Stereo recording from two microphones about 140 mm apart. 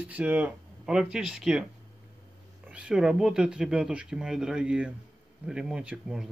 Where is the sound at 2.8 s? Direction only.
5° right (ahead or behind).